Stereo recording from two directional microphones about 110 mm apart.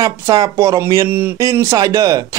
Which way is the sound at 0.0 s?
30° right (ahead or behind).